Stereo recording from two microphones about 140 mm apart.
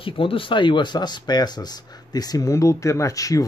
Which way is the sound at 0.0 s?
40° left (ahead or behind).